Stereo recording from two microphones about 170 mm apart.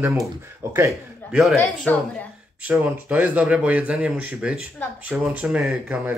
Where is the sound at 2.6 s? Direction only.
10° right (ahead or behind).